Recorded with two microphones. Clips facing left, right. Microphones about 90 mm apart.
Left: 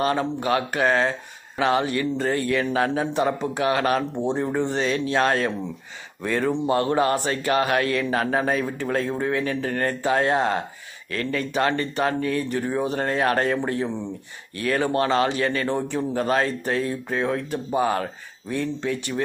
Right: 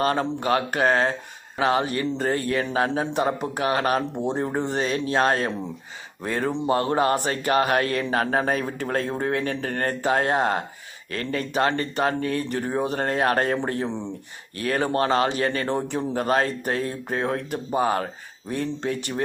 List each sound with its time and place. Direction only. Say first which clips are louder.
0.0 s a man's voice: even; 40° right (ahead or behind)
4.4 s a man's voice: left 1 dB; 45° right (ahead or behind)
14.6 s a man's voice: left 1 dB; 35° right (ahead or behind)